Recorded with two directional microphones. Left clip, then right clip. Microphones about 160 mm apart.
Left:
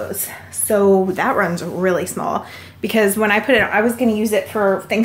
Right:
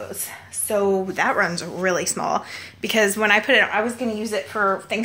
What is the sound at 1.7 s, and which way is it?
Speech, 10° right (ahead or behind).